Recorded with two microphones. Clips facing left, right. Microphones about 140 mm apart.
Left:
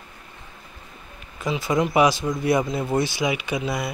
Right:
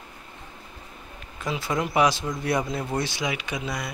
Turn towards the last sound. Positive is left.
turn(degrees=5)  # may be behind; listen again after turning